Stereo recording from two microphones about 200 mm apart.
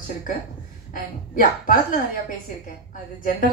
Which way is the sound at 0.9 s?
45° left (ahead or behind).